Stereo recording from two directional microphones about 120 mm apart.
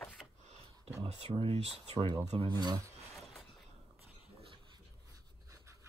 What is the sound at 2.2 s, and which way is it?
Speech, 65° right (ahead or behind).